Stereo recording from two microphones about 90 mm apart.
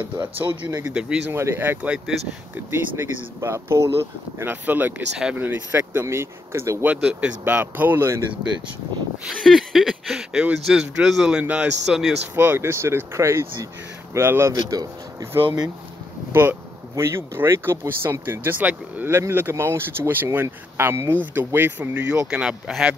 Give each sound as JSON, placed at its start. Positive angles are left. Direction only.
{"t": 0.7, "sound": "speech", "side_deg": -25}
{"t": 0.9, "sound": "speech", "side_deg": -10}
{"t": 1.3, "sound": "speech", "side_deg": -30}
{"t": 2.7, "sound": "speech", "side_deg": -25}
{"t": 4.4, "sound": "speech", "side_deg": -20}
{"t": 6.0, "sound": "speech", "side_deg": -30}
{"t": 6.8, "sound": "speech", "side_deg": -15}
{"t": 9.4, "sound": "speech", "side_deg": 0}
{"t": 12.4, "sound": "speech", "side_deg": -25}
{"t": 14.5, "sound": "speech", "side_deg": -45}
{"t": 16.3, "sound": "a sound", "side_deg": -25}
{"t": 16.9, "sound": "speech", "side_deg": -30}
{"t": 19.0, "sound": "speech", "side_deg": -30}